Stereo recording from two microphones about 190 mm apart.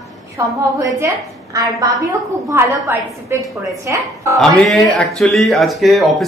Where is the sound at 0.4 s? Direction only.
15° right (ahead or behind).